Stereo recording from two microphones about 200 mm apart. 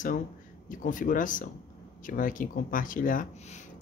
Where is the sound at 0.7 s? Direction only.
45° left (ahead or behind).